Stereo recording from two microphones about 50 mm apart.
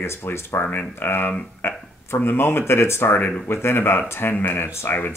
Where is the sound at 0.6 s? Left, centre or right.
Left.